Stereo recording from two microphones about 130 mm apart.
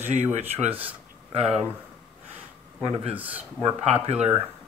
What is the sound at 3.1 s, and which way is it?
Speech, 10° right (ahead or behind).